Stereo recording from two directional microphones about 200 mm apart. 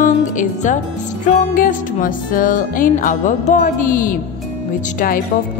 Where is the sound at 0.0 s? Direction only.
40° left (ahead or behind).